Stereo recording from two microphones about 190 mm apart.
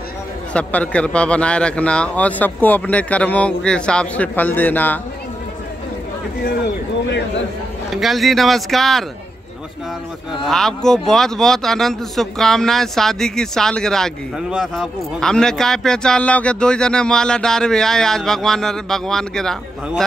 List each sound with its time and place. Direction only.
0.5 s a man's voice: 5° left (ahead or behind)
7.1 s a man's voice: 70° left (ahead or behind)
7.9 s a man's voice: centre (ahead or behind)
10.4 s a man's voice: centre (ahead or behind)